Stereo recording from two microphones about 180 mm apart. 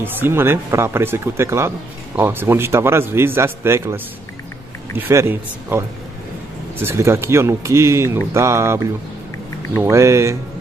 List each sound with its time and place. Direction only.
0.0 s a man's voice: 10° right (ahead or behind)
9.8 s a man's voice: 15° right (ahead or behind)